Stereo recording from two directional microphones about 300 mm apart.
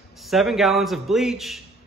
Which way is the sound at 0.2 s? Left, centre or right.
Centre.